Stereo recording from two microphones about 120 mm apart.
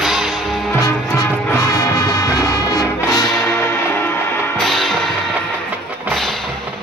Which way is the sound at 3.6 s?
20° left (ahead or behind).